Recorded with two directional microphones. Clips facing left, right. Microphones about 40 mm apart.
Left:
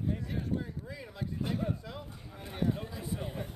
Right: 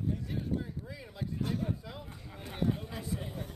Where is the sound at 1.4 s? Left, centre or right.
Centre.